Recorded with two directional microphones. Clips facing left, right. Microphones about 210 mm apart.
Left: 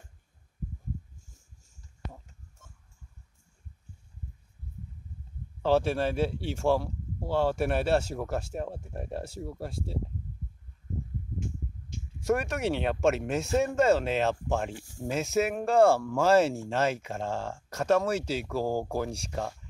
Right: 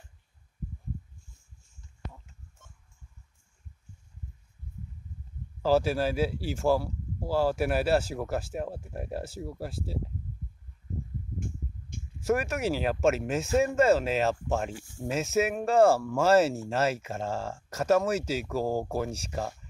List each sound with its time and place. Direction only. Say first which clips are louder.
5.6 s speech: even; 5° right (ahead or behind)
11.3 s a sound: left 1 dB; 50° right (ahead or behind)
12.2 s speech: even; 5° right (ahead or behind)